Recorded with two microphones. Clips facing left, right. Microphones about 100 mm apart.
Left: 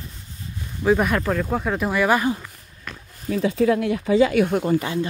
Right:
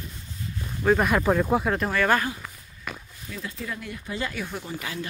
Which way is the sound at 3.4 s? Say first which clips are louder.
Left 17 dB; 70° left (ahead or behind).